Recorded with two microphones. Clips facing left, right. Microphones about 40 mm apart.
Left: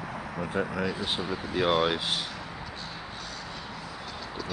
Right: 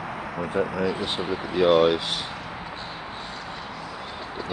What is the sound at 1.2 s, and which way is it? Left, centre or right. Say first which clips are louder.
Speech: right 4 dB; right.